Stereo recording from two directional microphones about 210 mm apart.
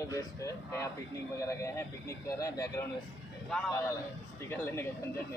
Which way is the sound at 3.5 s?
Centre (ahead or behind).